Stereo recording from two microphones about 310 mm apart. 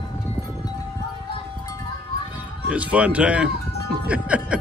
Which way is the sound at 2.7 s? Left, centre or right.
Centre.